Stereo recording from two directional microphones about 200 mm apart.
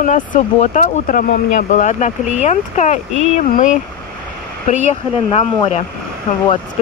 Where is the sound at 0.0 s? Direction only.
40° left (ahead or behind).